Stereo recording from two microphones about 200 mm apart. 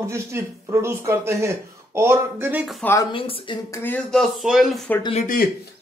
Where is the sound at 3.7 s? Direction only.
10° left (ahead or behind).